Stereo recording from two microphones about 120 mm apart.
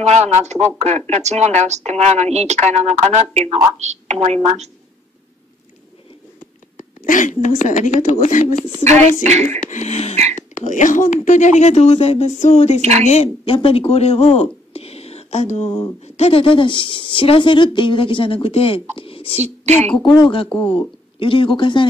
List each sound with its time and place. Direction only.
0.0 s a woman's voice: 70° right (ahead or behind)
6.8 s a woman's voice: 90° left
8.8 s a woman's voice: 70° right (ahead or behind)
9.6 s speech: 90° left; by 10.1 s 65° left (ahead or behind)
10.5 s speech: 90° left; by 12.8 s 65° left (ahead or behind)
13.5 s speech: 50° left (ahead or behind); by 15.8 s 70° left (ahead or behind)
16.0 s speech: 55° left (ahead or behind)
19.4 s a woman's voice: 65° right (ahead or behind)
20.1 s speech: 40° left (ahead or behind)